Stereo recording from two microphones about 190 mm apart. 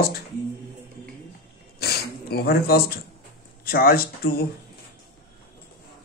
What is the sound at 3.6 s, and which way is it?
Speech, 50° left (ahead or behind).